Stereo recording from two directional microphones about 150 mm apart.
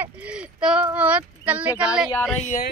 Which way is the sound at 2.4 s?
60° left (ahead or behind).